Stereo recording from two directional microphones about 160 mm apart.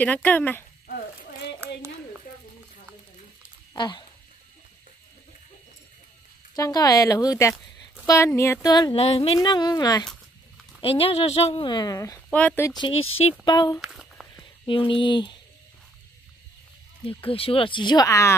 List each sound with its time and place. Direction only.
0.0 s speech: 10° left (ahead or behind)
0.8 s a sound: 65° left (ahead or behind)
3.7 s speech: 30° left (ahead or behind)
6.5 s a woman's voice: 25° left (ahead or behind)
8.9 s speech: 40° left (ahead or behind)
9.5 s a woman's voice: 25° left (ahead or behind)
10.8 s speech: 35° left (ahead or behind)
12.3 s speech: 10° left (ahead or behind)
12.7 s a woman's voice: 30° left (ahead or behind)
13.7 s a sound: 5° right (ahead or behind)
14.7 s speech: 30° left (ahead or behind)
17.0 s speech: 35° left (ahead or behind); by 18.3 s 20° left (ahead or behind)